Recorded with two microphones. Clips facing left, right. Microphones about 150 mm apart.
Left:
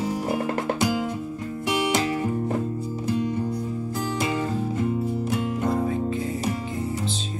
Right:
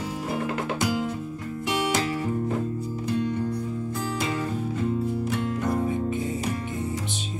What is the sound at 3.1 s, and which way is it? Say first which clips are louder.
Music: even; 15° left (ahead or behind).